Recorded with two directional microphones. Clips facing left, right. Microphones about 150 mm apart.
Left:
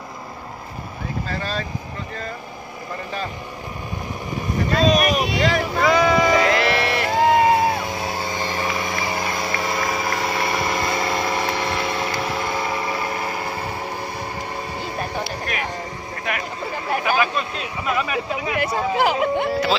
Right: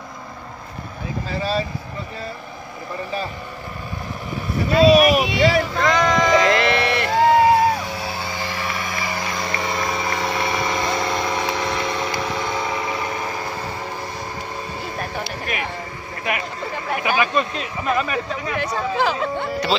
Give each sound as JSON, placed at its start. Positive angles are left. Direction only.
{"t": 1.3, "sound": "speech", "side_deg": -5}
{"t": 4.6, "sound": "speech", "side_deg": -5}
{"t": 5.7, "sound": "a sound", "side_deg": 5}
{"t": 8.7, "sound": "vehicle", "side_deg": 20}
{"t": 9.5, "sound": "engine", "side_deg": 5}
{"t": 12.2, "sound": "vehicle", "side_deg": 5}
{"t": 13.0, "sound": "train", "side_deg": 10}
{"t": 15.5, "sound": "speech", "side_deg": -5}
{"t": 16.9, "sound": "speech", "side_deg": 0}